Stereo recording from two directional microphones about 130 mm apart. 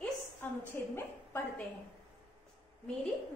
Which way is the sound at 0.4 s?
15° left (ahead or behind).